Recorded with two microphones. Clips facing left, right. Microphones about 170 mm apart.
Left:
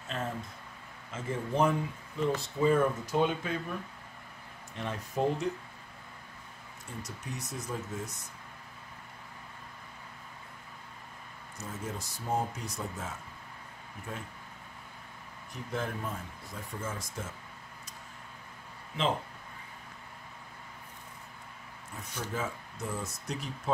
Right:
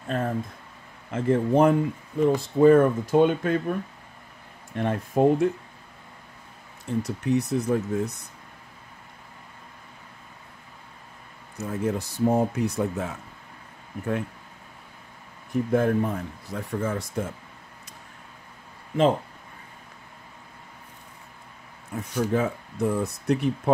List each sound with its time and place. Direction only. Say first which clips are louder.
0.0 s speech: right 9 dB; 55° right (ahead or behind)
4.7 s speech: right 10 dB; 55° right (ahead or behind)
7.0 s speech: right 17 dB; 65° right (ahead or behind)
11.5 s speech: right 12 dB; 65° right (ahead or behind)
15.5 s speech: right 14 dB; 55° right (ahead or behind)
22.1 s speech: right 12 dB; 55° right (ahead or behind)